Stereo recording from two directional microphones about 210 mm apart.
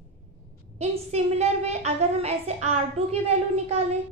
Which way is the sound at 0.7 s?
30° right (ahead or behind).